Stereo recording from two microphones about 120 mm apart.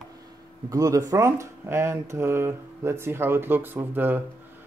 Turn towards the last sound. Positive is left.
turn(degrees=-15)  # may be behind; listen again after turning